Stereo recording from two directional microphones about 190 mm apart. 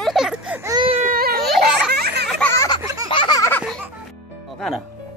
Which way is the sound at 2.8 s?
15° right (ahead or behind).